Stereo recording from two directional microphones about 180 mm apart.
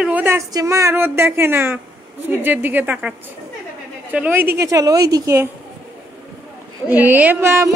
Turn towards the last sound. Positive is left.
turn(degrees=-15)  # may be behind; listen again after turning